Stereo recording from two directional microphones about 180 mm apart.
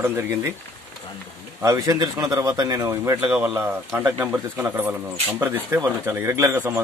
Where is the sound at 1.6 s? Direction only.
20° right (ahead or behind).